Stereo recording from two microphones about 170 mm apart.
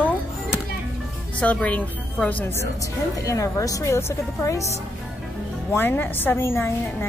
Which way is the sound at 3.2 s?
20° left (ahead or behind).